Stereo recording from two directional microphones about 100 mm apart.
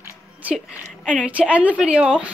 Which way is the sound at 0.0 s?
15° right (ahead or behind).